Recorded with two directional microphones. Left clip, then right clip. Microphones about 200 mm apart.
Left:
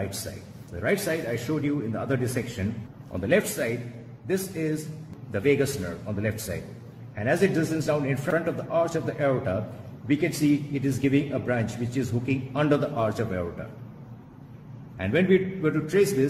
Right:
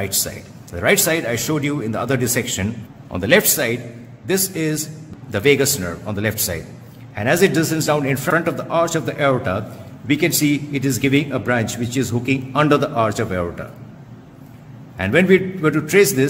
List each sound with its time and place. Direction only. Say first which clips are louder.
0.7 s a man's voice: right 10 dB; 45° right (ahead or behind)
15.0 s a man's voice: right 8 dB; 40° right (ahead or behind)